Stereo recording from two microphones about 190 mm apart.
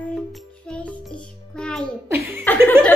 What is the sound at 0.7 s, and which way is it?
Music, 5° left (ahead or behind).